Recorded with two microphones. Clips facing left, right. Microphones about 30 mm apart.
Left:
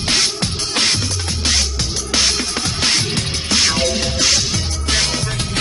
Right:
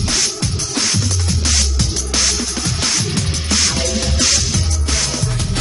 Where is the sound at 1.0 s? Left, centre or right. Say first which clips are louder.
Right 1 dB; centre.